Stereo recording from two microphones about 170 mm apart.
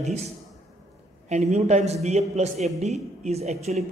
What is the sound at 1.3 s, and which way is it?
A man's voice, 40° right (ahead or behind).